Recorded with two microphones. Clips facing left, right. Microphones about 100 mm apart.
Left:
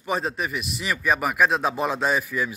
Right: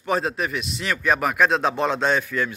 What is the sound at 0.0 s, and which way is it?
A man's voice, centre (ahead or behind).